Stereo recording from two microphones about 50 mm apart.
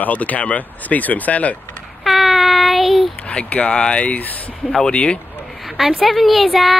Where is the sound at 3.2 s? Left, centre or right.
Left.